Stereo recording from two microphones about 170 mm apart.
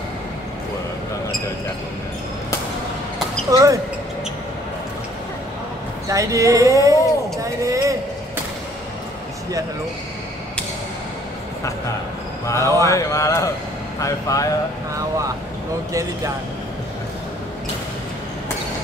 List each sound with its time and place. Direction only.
3.4 s speech: 20° right (ahead or behind)
6.0 s a man's voice: 20° right (ahead or behind)
12.4 s speech: 15° left (ahead or behind)